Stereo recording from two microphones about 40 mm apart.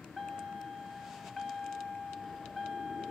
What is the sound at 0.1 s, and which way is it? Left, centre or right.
Beep, centre.